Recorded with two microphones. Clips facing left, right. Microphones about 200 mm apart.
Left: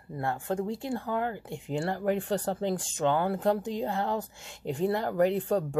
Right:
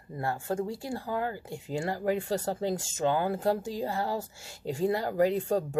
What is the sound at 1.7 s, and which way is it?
Speech, 5° right (ahead or behind).